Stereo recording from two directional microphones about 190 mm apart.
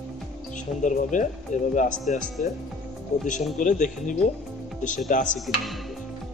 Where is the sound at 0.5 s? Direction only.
40° left (ahead or behind).